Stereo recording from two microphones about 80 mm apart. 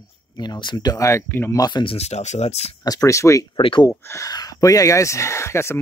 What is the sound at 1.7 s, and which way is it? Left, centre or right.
Speech, left.